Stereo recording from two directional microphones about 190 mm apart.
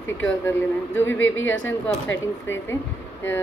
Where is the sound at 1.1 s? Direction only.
90° left.